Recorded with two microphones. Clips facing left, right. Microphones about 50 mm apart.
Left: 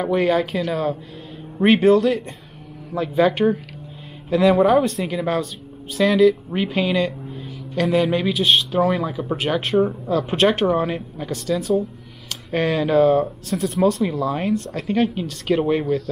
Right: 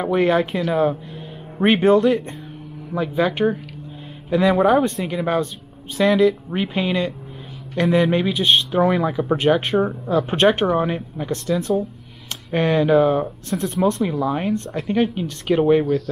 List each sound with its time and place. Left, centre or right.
0.0 s a man's voice: centre
2.9 s a man's voice: centre
13.6 s speech: centre
14.1 s a man's voice: centre